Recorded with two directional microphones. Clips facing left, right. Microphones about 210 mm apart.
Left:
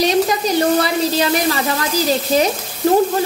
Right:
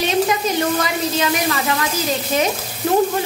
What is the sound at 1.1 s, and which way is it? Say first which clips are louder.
Speech: left 3 dB; 35° left (ahead or behind).